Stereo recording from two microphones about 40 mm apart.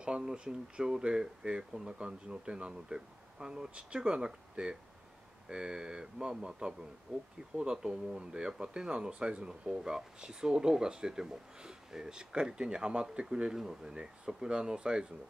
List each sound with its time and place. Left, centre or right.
0.0 s speech: centre